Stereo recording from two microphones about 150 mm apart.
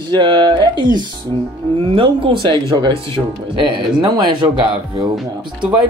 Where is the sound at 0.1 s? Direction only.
30° right (ahead or behind).